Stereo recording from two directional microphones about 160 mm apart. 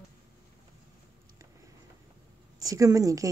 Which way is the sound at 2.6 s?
20° right (ahead or behind).